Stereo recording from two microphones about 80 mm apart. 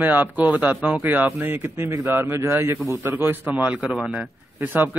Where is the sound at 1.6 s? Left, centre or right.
Right.